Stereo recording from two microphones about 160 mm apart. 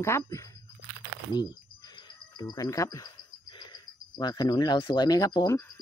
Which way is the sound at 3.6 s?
25° left (ahead or behind).